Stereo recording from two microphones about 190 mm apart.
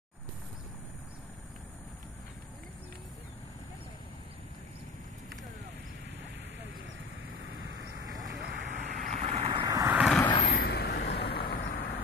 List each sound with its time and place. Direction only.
7.4 s vehicle: 65° right (ahead or behind)
8.2 s vehicle: 45° right (ahead or behind); by 9.9 s 20° right (ahead or behind)
9.9 s vehicle: centre (ahead or behind)
10.3 s vehicle: 45° left (ahead or behind)